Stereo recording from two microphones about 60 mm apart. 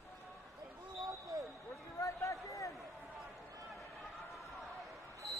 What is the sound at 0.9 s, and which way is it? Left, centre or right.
Basketball bounce, right.